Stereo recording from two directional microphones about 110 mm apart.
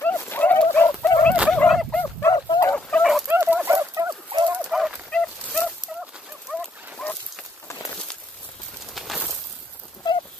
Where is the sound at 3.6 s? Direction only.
25° right (ahead or behind).